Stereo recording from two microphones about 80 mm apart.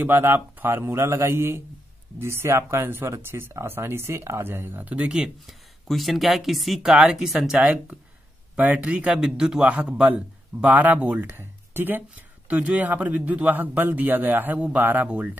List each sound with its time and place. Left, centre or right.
0.0 s speech: right
5.5 s speech: centre
7.6 s speech: centre